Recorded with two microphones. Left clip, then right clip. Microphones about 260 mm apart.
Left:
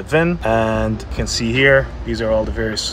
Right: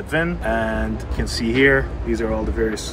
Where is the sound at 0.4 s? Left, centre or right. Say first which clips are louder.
Left 5 dB; left.